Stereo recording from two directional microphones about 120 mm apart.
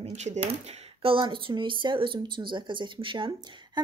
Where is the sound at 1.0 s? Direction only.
45° right (ahead or behind).